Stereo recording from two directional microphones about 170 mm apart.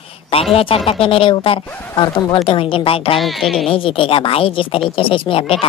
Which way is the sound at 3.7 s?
35° left (ahead or behind).